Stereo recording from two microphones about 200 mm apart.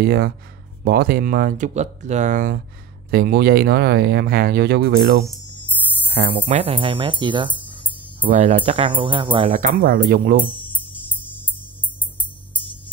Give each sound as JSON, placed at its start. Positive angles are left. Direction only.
{"t": 0.0, "sound": "speech", "side_deg": -50}
{"t": 5.2, "sound": "a sound", "side_deg": 10}
{"t": 6.4, "sound": "speech", "side_deg": -25}
{"t": 9.5, "sound": "speech", "side_deg": -40}